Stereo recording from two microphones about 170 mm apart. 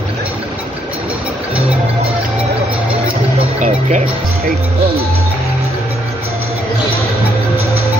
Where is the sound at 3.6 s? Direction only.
45° right (ahead or behind).